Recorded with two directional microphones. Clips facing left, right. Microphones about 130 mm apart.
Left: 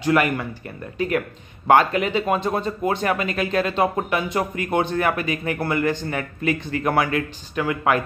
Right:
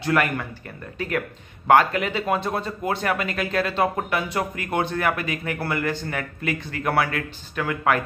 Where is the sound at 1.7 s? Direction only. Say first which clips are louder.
Left 1 dB; 20° left (ahead or behind).